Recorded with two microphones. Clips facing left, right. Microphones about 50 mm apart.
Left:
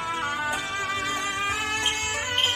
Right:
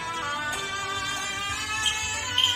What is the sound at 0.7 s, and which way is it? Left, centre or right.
Music, left.